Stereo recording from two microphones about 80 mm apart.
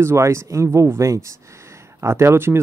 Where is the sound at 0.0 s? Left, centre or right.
Right.